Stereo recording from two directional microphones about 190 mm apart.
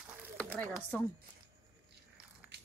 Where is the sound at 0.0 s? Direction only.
5° right (ahead or behind).